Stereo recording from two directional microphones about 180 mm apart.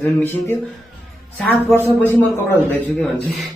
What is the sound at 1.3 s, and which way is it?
Speech, 10° left (ahead or behind).